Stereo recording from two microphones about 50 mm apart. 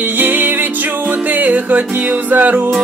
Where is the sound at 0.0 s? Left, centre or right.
Right.